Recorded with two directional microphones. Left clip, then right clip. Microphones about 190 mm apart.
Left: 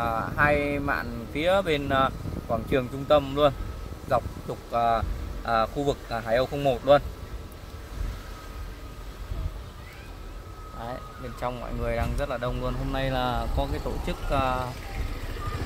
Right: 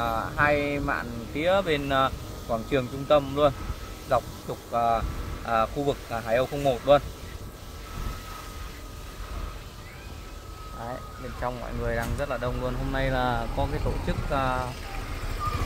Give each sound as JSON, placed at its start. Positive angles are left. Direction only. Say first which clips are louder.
{"t": 0.0, "sound": "speech", "louder": "even", "side_deg": 35}
{"t": 11.4, "sound": "speech", "louder": "even", "side_deg": 15}